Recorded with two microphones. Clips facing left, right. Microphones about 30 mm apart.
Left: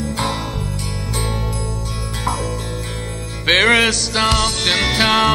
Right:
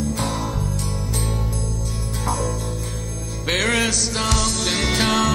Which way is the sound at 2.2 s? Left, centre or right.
Left.